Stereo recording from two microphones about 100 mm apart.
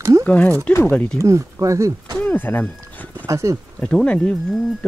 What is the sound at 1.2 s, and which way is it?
Speech, 30° right (ahead or behind).